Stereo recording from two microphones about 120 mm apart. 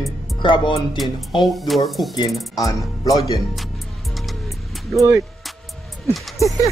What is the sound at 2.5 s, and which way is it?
Speech, 30° left (ahead or behind).